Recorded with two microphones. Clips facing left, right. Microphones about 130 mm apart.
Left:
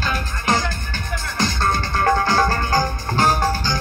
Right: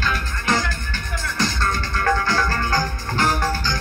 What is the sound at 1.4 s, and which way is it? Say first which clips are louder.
Music: left 3 dB; 50° left (ahead or behind).